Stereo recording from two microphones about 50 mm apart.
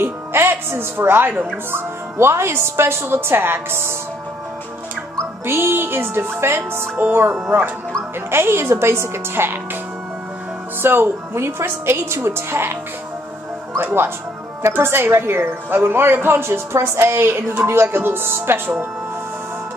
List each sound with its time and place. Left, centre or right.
0.0 s speech: right
1.7 s a woman's voice: right
5.5 s a woman's voice: right
7.0 s a woman's voice: right
8.3 s a woman's voice: right
10.8 s a woman's voice: right
13.7 s a woman's voice: right